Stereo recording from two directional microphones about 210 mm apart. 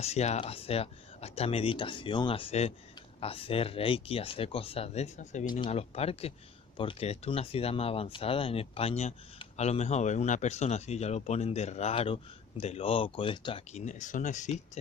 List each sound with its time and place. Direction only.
0.0 s speech: 30° left (ahead or behind)